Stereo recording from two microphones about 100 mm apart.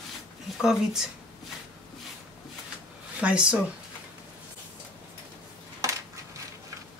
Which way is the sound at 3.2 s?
10° right (ahead or behind).